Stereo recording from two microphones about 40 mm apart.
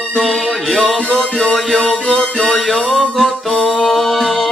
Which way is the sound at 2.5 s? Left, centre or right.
Centre.